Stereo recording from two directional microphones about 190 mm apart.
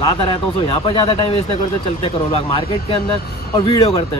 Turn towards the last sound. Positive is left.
turn(degrees=20)  # may be behind; listen again after turning